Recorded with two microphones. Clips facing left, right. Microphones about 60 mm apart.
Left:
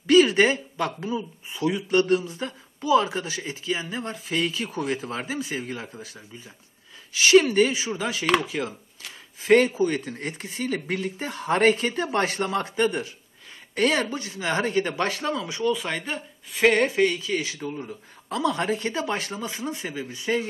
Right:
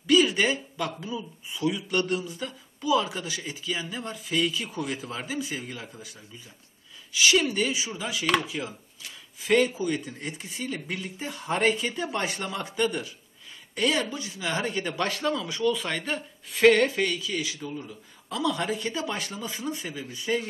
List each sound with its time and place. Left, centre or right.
0.0 s speech: left
13.7 s speech: left; by 15.8 s centre
15.8 s speech: centre
16.7 s speech: centre
17.1 s speech: left